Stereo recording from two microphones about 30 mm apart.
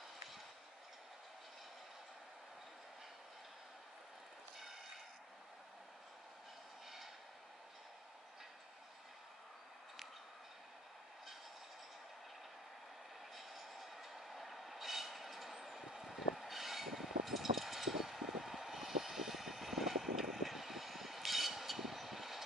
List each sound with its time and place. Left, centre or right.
13.3 s train: centre